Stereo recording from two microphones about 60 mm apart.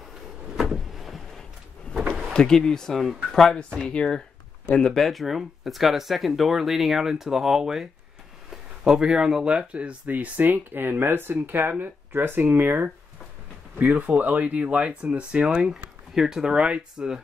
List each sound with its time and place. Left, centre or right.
0.6 s vehicle: centre
2.3 s speech: centre
4.9 s speech: centre